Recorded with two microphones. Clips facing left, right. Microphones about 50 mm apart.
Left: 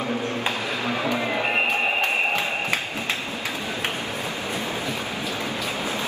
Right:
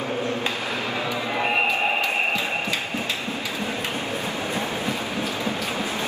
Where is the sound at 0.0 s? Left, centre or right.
Left.